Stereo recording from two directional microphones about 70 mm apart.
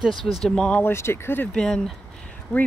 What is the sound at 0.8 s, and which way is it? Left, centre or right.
Speech, left.